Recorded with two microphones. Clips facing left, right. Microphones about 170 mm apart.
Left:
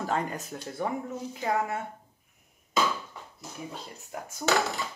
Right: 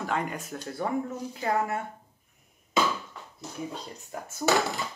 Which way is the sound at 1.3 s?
15° left (ahead or behind).